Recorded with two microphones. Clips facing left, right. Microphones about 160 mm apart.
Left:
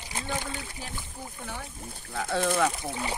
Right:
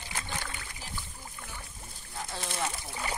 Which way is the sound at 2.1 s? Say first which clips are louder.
Left 11 dB; 60° left (ahead or behind).